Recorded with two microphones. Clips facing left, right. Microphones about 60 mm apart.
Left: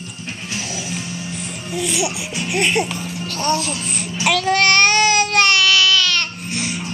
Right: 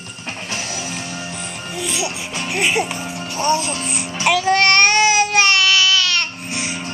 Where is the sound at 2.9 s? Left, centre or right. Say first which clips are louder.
Right 1 dB; right.